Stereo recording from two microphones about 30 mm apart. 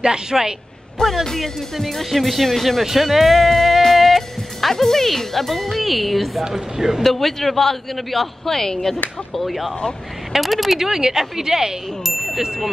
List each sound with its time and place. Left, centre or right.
0.0 s a man's voice: right
1.2 s a man's voice: centre
2.4 s a man's voice: centre
2.8 s music: centre
4.8 s speech: centre
6.4 s a woman's voice: centre
7.0 s a man's voice: centre
8.5 s a man's voice: centre
9.3 s speech: centre
10.8 s a woman's voice: centre
12.0 s a sound: centre
12.4 s a woman's voice: centre